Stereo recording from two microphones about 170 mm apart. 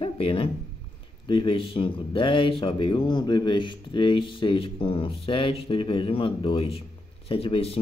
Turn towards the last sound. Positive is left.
turn(degrees=35)  # may be behind; listen again after turning